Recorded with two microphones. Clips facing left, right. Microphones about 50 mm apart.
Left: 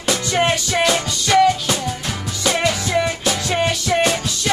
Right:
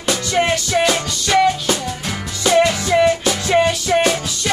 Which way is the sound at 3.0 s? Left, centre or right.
Centre.